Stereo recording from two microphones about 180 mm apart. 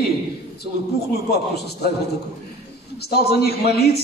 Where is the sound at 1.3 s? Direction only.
65° left (ahead or behind).